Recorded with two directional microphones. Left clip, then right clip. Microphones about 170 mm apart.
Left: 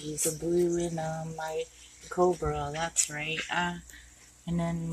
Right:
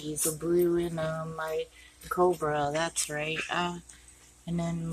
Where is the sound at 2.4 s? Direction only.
15° right (ahead or behind).